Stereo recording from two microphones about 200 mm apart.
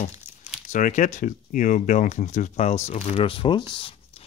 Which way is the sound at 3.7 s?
25° left (ahead or behind).